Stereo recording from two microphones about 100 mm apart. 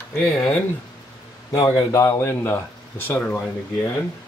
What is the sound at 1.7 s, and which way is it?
Speech, 30° left (ahead or behind).